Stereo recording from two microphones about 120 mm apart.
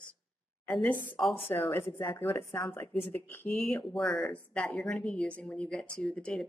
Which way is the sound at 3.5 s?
5° left (ahead or behind).